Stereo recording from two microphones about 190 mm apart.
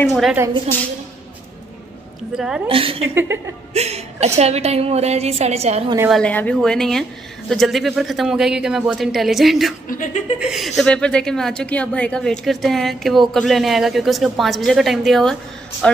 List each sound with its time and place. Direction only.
0.1 s a woman's voice: centre (ahead or behind)
2.3 s a woman's voice: 5° right (ahead or behind)
2.7 s a woman's voice: 30° right (ahead or behind)
6.0 s a woman's voice: 5° left (ahead or behind)
9.8 s speech: 45° left (ahead or behind)
10.4 s a woman's voice: centre (ahead or behind)